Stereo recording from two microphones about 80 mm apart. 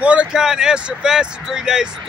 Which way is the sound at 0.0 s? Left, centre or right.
Centre.